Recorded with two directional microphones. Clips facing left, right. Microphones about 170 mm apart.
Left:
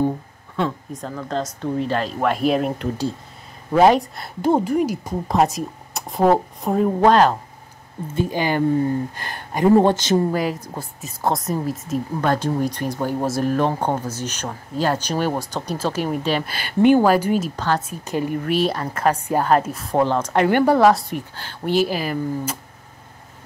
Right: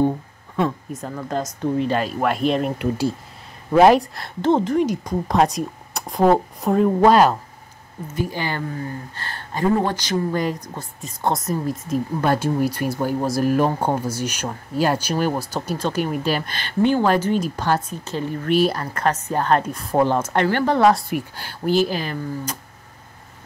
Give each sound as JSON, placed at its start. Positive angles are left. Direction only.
{"t": 0.6, "sound": "speech", "side_deg": -10}
{"t": 3.7, "sound": "speech", "side_deg": -5}
{"t": 4.4, "sound": "speech", "side_deg": 10}
{"t": 7.1, "sound": "speech", "side_deg": -10}
{"t": 8.1, "sound": "a woman's voice", "side_deg": 20}
{"t": 10.3, "sound": "speech", "side_deg": 5}
{"t": 17.6, "sound": "speech", "side_deg": -10}
{"t": 17.8, "sound": "a woman's voice", "side_deg": 10}
{"t": 18.5, "sound": "speech", "side_deg": 0}
{"t": 20.4, "sound": "speech", "side_deg": 10}